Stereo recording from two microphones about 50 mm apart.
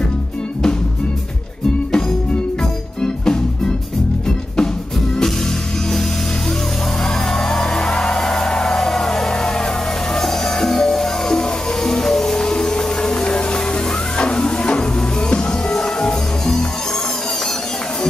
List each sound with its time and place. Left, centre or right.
3.0 s music: centre
7.3 s music: centre